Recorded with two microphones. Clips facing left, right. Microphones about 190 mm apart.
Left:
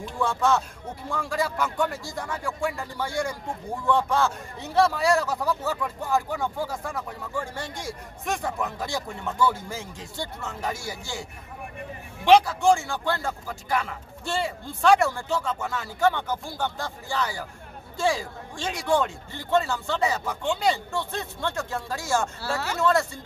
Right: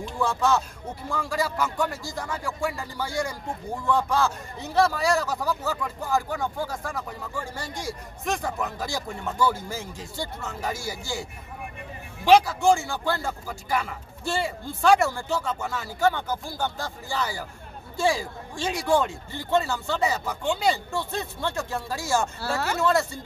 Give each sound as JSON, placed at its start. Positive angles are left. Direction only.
{"t": 0.0, "sound": "a man's voice", "side_deg": 0}
{"t": 12.3, "sound": "a man's voice", "side_deg": -5}
{"t": 22.4, "sound": "speech", "side_deg": -50}
{"t": 22.8, "sound": "speech", "side_deg": -5}